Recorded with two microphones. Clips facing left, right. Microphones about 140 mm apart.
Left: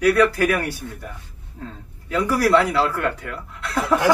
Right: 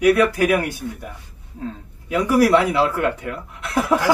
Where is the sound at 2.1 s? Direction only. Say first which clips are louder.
Right 3 dB; 15° right (ahead or behind).